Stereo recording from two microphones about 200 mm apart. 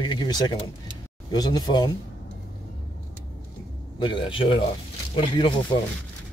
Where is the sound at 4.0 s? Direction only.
25° left (ahead or behind).